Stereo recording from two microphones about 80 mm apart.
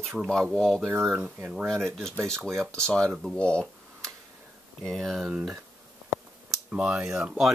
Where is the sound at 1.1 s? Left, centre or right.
Centre.